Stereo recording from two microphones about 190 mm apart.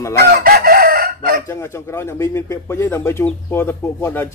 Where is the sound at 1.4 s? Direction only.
15° left (ahead or behind).